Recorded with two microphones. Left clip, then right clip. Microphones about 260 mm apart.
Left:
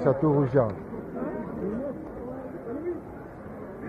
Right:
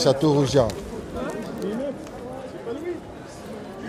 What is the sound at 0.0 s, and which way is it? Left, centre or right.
Speech, right.